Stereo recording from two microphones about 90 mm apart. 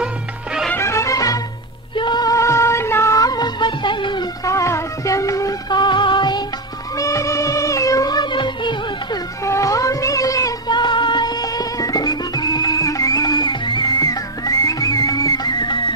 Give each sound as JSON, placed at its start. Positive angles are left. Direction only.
{"t": 0.7, "sound": "music", "side_deg": 35}
{"t": 2.0, "sound": "music", "side_deg": 55}
{"t": 2.3, "sound": "music", "side_deg": 35}
{"t": 4.5, "sound": "music", "side_deg": 35}
{"t": 5.7, "sound": "music", "side_deg": 55}
{"t": 7.0, "sound": "music", "side_deg": 35}
{"t": 9.4, "sound": "a sound", "side_deg": 35}
{"t": 10.7, "sound": "music", "side_deg": 55}